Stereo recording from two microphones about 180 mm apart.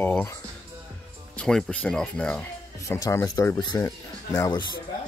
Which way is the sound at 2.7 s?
15° left (ahead or behind).